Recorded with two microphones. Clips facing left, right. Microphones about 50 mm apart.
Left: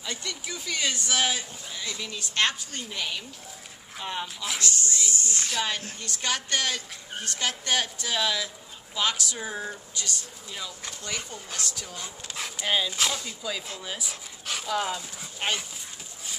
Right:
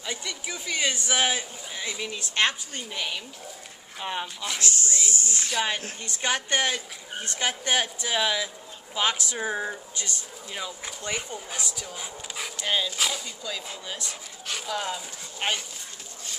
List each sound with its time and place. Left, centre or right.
0.0 s speech: centre
2.8 s speech: centre
4.6 s speech: right
5.3 s speech: centre
6.0 s speech: right; by 15.6 s centre